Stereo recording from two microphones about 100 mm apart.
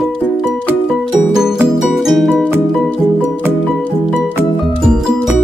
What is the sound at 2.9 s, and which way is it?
Music, 20° left (ahead or behind).